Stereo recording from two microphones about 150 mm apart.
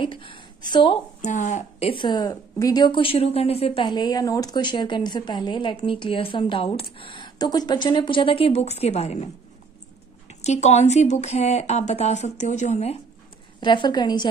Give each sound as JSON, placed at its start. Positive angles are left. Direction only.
{"t": 0.0, "sound": "a woman's voice", "side_deg": 35}
{"t": 1.2, "sound": "speech", "side_deg": 55}
{"t": 1.9, "sound": "a woman's voice", "side_deg": 30}
{"t": 10.4, "sound": "speech", "side_deg": 50}
{"t": 13.6, "sound": "a woman's voice", "side_deg": 30}